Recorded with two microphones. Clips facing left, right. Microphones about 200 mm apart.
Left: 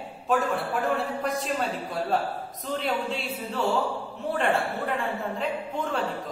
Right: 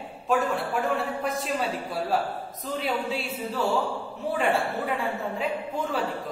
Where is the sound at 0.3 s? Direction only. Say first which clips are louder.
Even; centre (ahead or behind).